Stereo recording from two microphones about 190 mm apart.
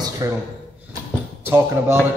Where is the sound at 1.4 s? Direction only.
10° right (ahead or behind).